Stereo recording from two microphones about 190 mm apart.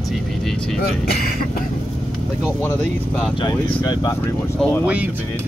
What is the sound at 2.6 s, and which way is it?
Speech, 10° left (ahead or behind).